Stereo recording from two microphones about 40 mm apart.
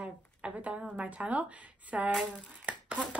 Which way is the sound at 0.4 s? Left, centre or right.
Right.